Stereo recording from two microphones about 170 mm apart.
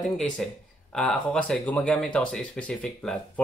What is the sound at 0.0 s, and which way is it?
Speech, centre (ahead or behind).